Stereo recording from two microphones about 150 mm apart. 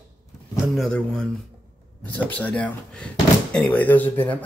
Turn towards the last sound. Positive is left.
turn(degrees=10)  # may be behind; listen again after turning